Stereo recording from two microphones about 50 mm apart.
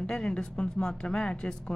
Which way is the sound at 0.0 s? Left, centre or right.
Centre.